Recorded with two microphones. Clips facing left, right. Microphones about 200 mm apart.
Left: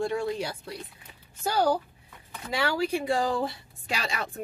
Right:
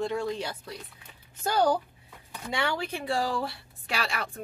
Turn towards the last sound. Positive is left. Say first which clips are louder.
# even
turn(degrees=20)  # may be behind; listen again after turning